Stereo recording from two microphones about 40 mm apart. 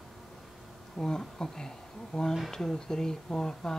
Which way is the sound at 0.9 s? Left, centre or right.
Centre.